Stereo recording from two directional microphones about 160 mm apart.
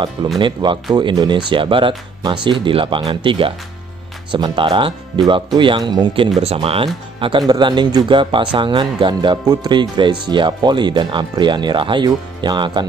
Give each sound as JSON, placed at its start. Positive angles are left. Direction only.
{"t": 0.4, "sound": "speech", "side_deg": -30}